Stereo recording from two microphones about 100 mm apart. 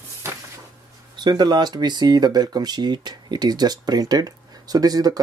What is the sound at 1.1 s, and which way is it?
Speech, 45° right (ahead or behind).